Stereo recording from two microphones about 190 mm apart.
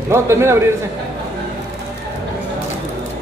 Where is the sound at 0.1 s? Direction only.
15° right (ahead or behind).